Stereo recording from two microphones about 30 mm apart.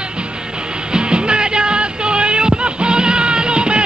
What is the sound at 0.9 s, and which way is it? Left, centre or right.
Music, right.